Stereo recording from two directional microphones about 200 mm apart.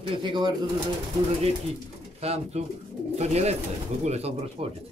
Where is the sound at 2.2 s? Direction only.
30° right (ahead or behind).